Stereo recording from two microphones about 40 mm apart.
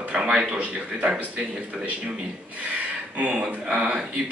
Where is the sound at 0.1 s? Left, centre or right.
Right.